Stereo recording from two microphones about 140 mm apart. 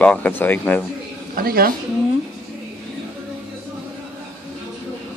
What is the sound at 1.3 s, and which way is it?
Speech, 90° right.